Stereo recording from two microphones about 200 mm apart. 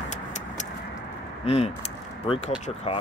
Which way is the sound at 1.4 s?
30° left (ahead or behind).